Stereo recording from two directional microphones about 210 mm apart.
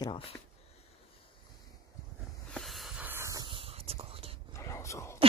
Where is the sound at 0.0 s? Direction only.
25° left (ahead or behind).